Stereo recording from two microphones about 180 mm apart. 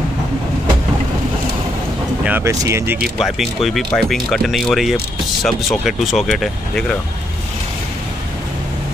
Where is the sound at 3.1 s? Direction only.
Centre (ahead or behind).